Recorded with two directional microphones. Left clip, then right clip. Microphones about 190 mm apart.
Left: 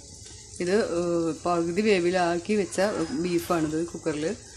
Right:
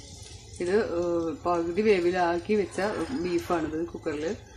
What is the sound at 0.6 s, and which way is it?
Speech, 35° left (ahead or behind).